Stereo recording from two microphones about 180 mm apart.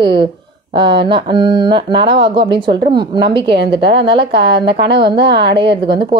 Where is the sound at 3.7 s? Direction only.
70° right (ahead or behind).